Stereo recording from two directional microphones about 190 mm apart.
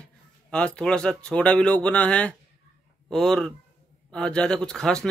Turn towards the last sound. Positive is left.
turn(degrees=5)  # may be behind; listen again after turning